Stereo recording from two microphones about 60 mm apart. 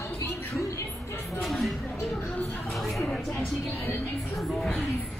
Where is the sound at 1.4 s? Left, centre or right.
Centre.